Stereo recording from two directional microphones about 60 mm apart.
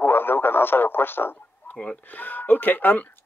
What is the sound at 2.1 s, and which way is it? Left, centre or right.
Speech, left.